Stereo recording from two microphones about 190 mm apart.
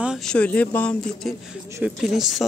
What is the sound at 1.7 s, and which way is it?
Speech, 5° right (ahead or behind).